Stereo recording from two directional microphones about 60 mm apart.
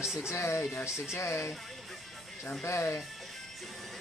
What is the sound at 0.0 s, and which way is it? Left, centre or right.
Speech, centre.